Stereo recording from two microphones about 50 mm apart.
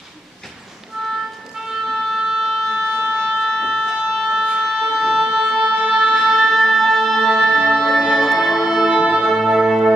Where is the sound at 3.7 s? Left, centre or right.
Centre.